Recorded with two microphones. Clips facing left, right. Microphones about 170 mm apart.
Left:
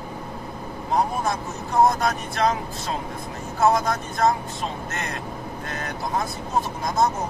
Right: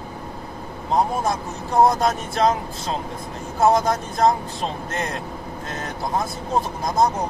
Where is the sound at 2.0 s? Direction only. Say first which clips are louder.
Right 3 dB; 25° right (ahead or behind).